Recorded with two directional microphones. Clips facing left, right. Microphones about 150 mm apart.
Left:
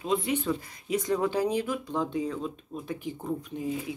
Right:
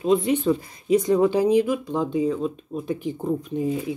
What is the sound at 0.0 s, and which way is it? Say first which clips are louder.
Speech: right 8 dB; 20° right (ahead or behind).